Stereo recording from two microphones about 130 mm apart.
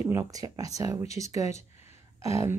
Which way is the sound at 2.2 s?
25° right (ahead or behind).